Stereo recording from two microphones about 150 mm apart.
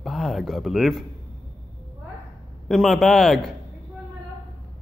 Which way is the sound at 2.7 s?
Centre (ahead or behind).